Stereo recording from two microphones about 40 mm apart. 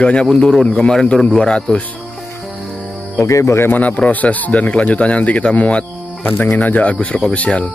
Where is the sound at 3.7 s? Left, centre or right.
Left.